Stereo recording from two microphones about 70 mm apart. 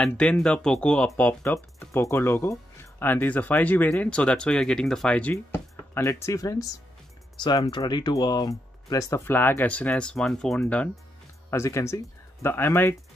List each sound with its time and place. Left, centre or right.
0.0 s speech: centre
1.4 s speech: left; by 5.3 s centre
6.0 s speech: left
7.3 s speech: left
7.6 s speech: left
9.2 s speech: left
9.8 s speech: centre
11.5 s speech: left